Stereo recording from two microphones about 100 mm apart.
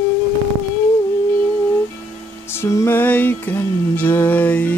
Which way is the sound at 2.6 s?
30° left (ahead or behind).